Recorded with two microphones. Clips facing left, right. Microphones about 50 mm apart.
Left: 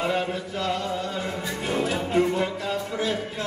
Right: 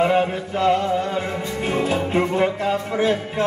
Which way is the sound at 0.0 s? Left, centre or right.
Right.